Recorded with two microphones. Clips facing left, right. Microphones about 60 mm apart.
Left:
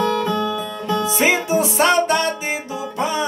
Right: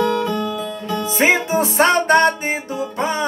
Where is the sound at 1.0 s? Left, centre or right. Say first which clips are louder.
Right 3 dB; right.